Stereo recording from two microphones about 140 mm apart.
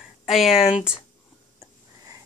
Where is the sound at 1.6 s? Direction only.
25° right (ahead or behind).